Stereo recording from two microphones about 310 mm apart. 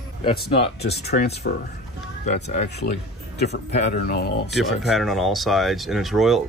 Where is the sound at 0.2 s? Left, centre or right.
Centre.